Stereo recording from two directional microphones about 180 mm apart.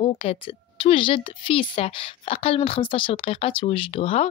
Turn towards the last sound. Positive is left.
turn(degrees=30)  # may be behind; listen again after turning